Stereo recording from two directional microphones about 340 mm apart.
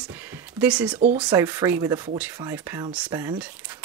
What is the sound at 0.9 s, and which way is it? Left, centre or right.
Speech, centre.